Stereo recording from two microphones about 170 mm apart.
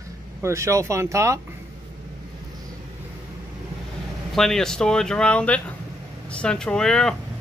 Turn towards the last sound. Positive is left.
turn(degrees=5)  # may be behind; listen again after turning